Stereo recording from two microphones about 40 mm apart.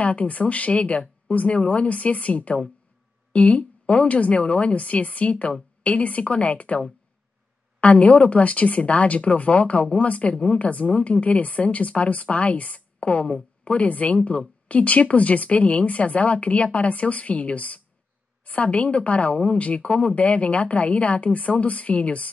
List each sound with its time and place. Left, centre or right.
0.0 s speech: left
7.8 s speech: left